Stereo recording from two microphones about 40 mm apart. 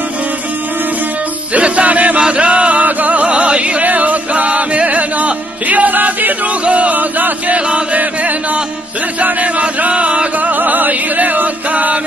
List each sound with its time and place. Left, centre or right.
1.5 s music: right
2.1 s chant: right
3.0 s music: right
3.8 s music: right
7.5 s chant: right
8.0 s chant: right
9.2 s music: right
10.5 s chant: right